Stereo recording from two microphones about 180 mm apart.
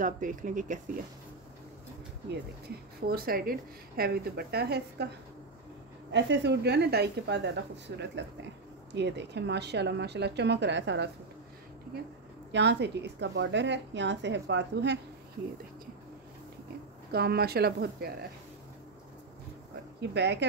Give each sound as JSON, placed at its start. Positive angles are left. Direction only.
{"t": 0.0, "sound": "speech", "side_deg": -45}
{"t": 3.0, "sound": "a woman's voice", "side_deg": -55}
{"t": 6.1, "sound": "a woman's voice", "side_deg": -75}
{"t": 12.5, "sound": "a woman's voice", "side_deg": -70}
{"t": 17.1, "sound": "a woman's voice", "side_deg": -60}
{"t": 20.0, "sound": "a woman's voice", "side_deg": -75}